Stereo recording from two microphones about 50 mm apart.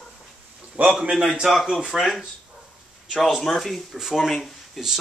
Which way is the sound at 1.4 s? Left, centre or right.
Centre.